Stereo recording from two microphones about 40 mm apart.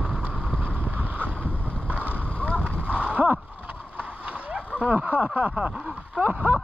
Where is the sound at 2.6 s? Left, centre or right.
Right.